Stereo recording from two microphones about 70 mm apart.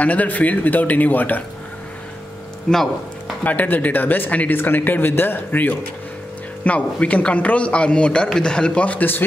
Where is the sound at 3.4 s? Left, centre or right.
Left.